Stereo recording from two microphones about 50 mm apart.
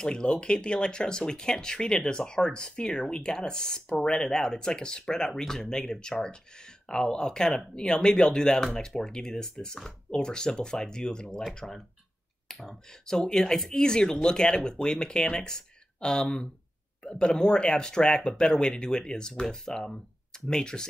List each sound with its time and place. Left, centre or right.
0.0 s speech: centre